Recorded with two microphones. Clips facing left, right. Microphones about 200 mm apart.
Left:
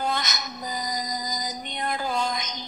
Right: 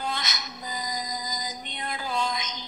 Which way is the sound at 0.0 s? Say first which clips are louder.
Left 4 dB; 45° left (ahead or behind).